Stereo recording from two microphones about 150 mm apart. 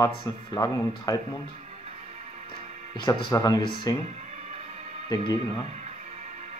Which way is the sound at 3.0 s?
25° left (ahead or behind).